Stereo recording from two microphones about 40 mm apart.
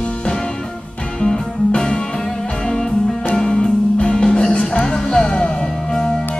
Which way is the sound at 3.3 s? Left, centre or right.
Centre.